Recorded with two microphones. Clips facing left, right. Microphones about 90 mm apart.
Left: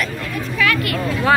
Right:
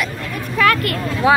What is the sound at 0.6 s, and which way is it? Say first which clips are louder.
Vehicle: right 4 dB; 40° right (ahead or behind).